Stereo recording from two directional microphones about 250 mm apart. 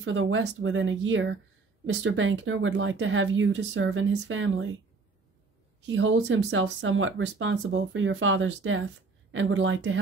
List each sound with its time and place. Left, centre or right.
0.0 s speech: right
5.9 s speech: right